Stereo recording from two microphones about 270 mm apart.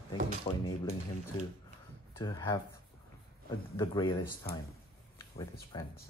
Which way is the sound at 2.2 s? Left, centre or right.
Centre.